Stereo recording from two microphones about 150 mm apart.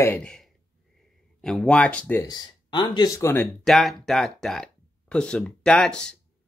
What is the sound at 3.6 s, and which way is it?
Speech, centre (ahead or behind).